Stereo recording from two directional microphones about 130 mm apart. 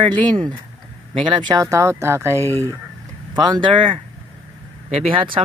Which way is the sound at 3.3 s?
35° right (ahead or behind).